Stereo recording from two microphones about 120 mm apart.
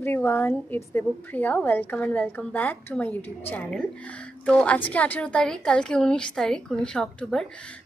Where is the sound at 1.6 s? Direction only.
10° left (ahead or behind).